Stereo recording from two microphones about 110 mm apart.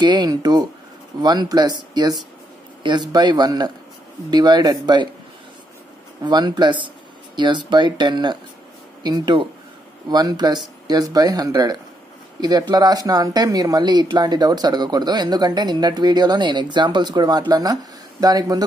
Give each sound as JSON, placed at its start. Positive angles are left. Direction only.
{"t": 0.0, "sound": "speech", "side_deg": -40}
{"t": 6.2, "sound": "speech", "side_deg": -40}